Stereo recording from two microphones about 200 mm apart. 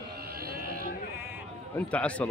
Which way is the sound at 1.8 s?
5° left (ahead or behind).